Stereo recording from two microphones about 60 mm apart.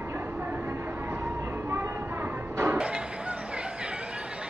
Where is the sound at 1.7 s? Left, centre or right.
Right.